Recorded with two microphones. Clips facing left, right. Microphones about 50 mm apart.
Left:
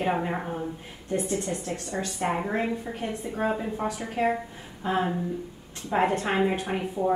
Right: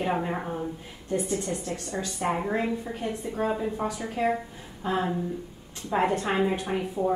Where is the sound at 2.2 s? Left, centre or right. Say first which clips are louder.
Even; centre.